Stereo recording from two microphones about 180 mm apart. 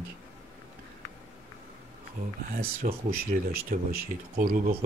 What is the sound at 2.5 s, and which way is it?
Speech, 55° right (ahead or behind).